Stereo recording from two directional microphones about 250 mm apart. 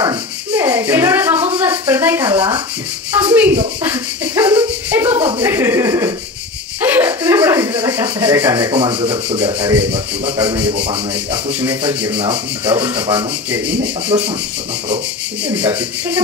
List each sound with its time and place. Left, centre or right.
0.0 s a sound: centre
5.4 s speech: centre
6.8 s rub: centre
9.5 s speech: centre
11.9 s speech: centre
12.2 s sanding: centre
14.1 s speech: centre
15.4 s speech: centre